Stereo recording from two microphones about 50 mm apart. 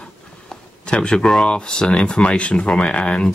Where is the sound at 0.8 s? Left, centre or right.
Centre.